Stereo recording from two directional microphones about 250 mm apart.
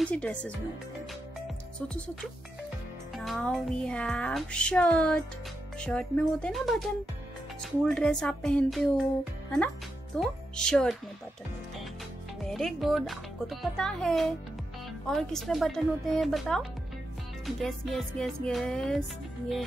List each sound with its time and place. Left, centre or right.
0.0 s speech: centre
3.3 s speech: centre
7.9 s speech: centre
10.1 s speech: centre
12.4 s speech: centre